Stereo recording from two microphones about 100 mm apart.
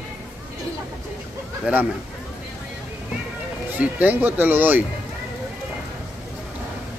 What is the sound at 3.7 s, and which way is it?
Speech, 15° right (ahead or behind).